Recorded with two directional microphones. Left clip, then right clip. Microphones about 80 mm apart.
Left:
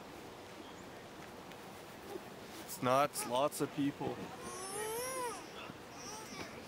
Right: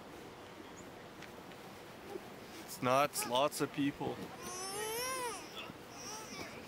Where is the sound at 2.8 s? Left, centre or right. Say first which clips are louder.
Even; centre.